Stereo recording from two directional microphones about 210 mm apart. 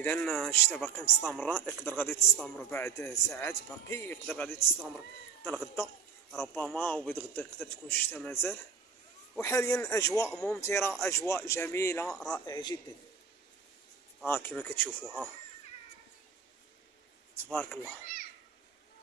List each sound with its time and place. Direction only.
0.0 s a man's voice: 5° left (ahead or behind)
4.7 s a man's voice: centre (ahead or behind)
6.3 s a man's voice: 5° left (ahead or behind)
12.1 s a man's voice: centre (ahead or behind)
12.4 s a man's voice: 20° left (ahead or behind)
14.2 s a man's voice: 10° left (ahead or behind)
17.5 s a man's voice: 10° left (ahead or behind)